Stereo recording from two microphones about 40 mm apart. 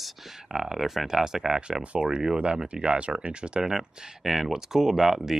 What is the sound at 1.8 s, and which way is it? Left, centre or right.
Speech, right.